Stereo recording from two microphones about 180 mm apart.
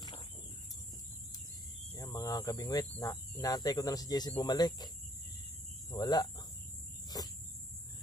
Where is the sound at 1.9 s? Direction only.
20° left (ahead or behind).